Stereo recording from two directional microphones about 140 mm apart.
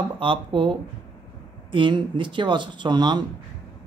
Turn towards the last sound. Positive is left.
turn(degrees=-30)  # may be behind; listen again after turning